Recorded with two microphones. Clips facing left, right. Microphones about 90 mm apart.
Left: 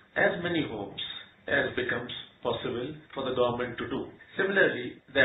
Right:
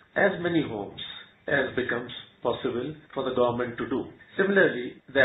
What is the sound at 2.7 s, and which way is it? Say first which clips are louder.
A man's voice: right 3 dB; 5° right (ahead or behind).